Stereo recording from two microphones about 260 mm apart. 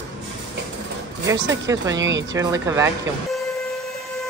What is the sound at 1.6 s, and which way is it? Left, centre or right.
Speech, centre.